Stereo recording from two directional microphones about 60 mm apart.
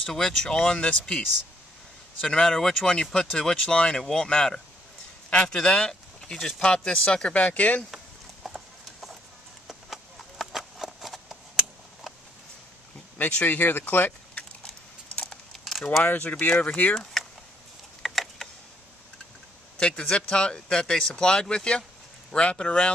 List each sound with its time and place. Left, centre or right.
0.0 s speech: centre
2.2 s speech: centre; by 7.8 s left
7.9 s clip-clop: centre
9.7 s horse: centre
13.2 s speech: left
15.6 s a sound: centre
16.0 s speech: left
16.9 s vehicle: centre
18.0 s a sound: centre
19.8 s speech: centre